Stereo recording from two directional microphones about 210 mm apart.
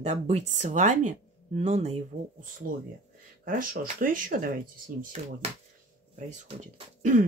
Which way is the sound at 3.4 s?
40° right (ahead or behind).